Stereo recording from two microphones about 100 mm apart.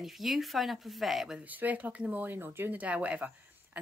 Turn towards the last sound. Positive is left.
turn(degrees=-15)  # may be behind; listen again after turning